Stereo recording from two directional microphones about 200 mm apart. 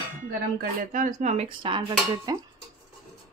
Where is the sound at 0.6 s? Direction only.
40° right (ahead or behind); by 2.4 s 20° right (ahead or behind).